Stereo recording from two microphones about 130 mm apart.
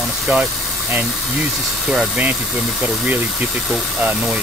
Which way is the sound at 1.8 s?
5° right (ahead or behind).